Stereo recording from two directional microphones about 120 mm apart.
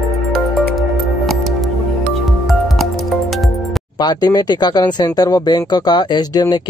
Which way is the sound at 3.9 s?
35° left (ahead or behind).